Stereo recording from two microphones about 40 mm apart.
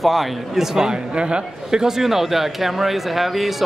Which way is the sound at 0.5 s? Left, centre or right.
Centre.